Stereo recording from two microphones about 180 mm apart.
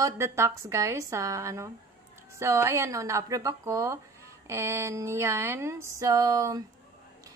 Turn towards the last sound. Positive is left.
turn(degrees=-20)  # may be behind; listen again after turning